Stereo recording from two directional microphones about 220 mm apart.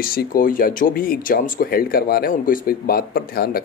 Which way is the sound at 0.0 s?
40° left (ahead or behind).